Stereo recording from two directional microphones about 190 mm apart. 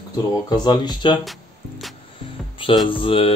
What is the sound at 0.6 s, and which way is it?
Speech, 25° left (ahead or behind).